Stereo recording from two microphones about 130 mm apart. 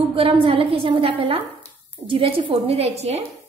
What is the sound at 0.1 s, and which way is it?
A woman's voice, 45° right (ahead or behind).